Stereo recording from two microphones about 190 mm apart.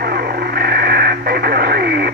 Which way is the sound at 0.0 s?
55° right (ahead or behind).